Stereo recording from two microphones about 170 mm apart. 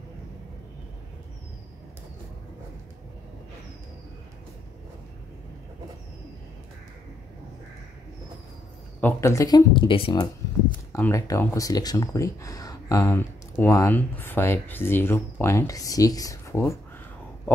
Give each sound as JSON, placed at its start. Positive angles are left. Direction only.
{"t": 9.0, "sound": "speech", "side_deg": 15}
{"t": 10.9, "sound": "speech", "side_deg": 15}